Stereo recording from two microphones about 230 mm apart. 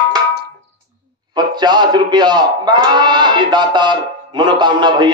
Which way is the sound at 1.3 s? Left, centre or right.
Centre.